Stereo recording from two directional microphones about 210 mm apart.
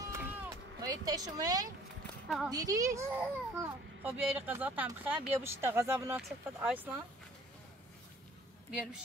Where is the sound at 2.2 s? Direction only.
Centre (ahead or behind).